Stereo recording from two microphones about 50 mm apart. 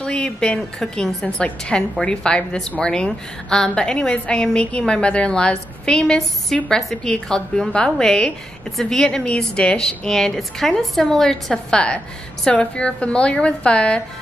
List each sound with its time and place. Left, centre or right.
0.0 s a woman's voice: centre
1.2 s a woman's voice: centre